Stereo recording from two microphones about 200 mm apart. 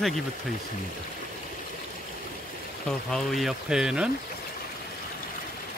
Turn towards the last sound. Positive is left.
turn(degrees=-5)  # may be behind; listen again after turning